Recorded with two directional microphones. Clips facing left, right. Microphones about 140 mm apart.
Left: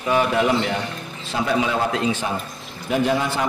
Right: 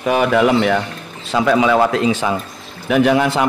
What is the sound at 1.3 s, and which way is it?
A man's voice, 90° right.